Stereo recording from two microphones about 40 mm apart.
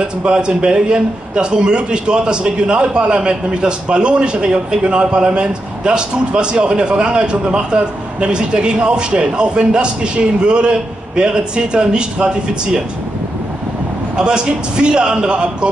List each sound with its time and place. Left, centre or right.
0.2 s a man's voice: right
14.1 s a man's voice: right